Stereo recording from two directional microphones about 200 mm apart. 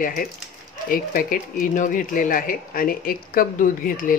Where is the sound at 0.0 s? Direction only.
45° left (ahead or behind).